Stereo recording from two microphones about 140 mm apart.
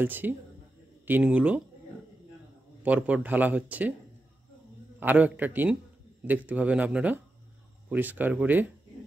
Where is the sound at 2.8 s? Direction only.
10° right (ahead or behind).